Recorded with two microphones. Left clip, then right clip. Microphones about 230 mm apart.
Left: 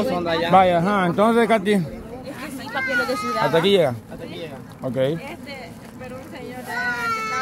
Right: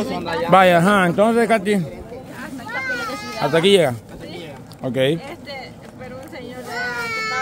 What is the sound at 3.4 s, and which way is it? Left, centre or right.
A man's voice, centre.